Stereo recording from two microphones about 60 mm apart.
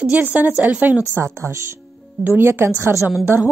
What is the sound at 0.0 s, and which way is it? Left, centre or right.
Speech, right.